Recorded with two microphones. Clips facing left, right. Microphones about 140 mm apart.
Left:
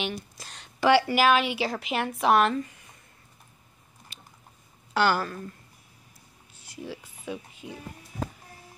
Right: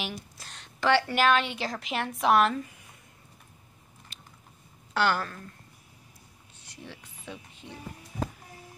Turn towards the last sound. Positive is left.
turn(degrees=5)  # may be behind; listen again after turning